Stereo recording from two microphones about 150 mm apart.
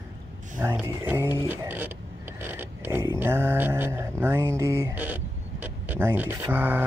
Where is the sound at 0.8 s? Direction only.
15° right (ahead or behind).